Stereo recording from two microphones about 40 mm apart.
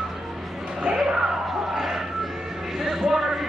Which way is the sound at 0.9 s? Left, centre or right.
Centre.